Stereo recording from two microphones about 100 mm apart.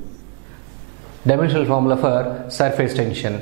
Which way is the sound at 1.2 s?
10° right (ahead or behind).